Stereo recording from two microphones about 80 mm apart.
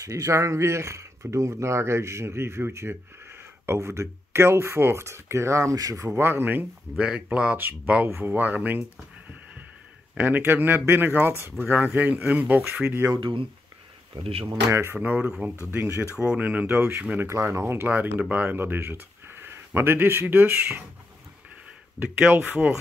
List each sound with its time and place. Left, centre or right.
0.0 s speech: right
6.0 s speech: right
7.0 s speech: centre
10.1 s speech: right
12.8 s speech: right
13.2 s speech: right
14.7 s speech: right
15.0 s speech: centre
15.7 s speech: right
17.3 s speech: right
22.0 s speech: right